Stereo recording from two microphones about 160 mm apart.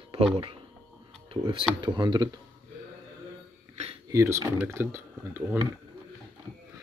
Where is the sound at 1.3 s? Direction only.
35° right (ahead or behind).